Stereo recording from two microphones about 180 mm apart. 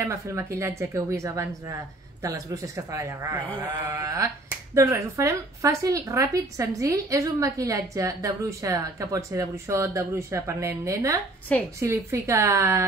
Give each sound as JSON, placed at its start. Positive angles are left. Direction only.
{"t": 0.0, "sound": "speech", "side_deg": -15}
{"t": 11.5, "sound": "a woman's voice", "side_deg": 5}
{"t": 11.8, "sound": "speech", "side_deg": -15}